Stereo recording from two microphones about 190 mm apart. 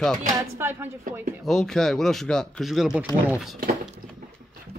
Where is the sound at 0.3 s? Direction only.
15° right (ahead or behind).